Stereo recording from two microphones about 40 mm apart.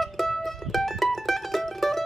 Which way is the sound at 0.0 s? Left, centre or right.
Centre.